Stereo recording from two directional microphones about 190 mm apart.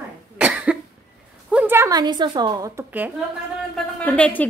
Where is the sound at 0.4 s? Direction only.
5° right (ahead or behind).